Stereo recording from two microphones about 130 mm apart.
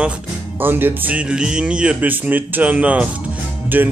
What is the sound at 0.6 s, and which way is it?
Speech, 15° right (ahead or behind).